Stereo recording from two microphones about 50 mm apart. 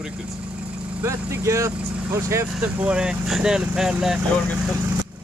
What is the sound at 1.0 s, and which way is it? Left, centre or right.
Speech, right.